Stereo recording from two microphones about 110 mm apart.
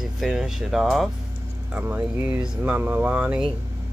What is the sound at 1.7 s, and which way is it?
Speech, 15° right (ahead or behind).